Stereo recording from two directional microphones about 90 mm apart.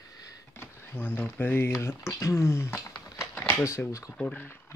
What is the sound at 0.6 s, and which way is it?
Speech, 20° left (ahead or behind).